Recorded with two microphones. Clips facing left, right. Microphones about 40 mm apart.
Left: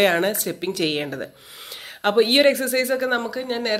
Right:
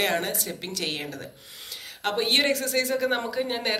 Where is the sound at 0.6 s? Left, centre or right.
Left.